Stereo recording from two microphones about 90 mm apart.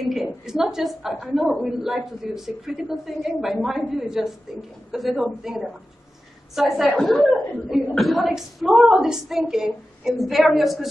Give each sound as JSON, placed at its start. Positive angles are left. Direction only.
{"t": 0.0, "sound": "a woman's voice", "side_deg": -5}